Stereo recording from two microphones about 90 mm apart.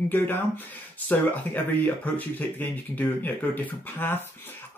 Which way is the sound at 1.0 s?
20° left (ahead or behind).